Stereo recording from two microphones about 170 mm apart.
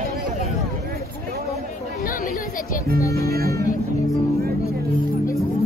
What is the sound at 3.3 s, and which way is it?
Speech, 65° right (ahead or behind).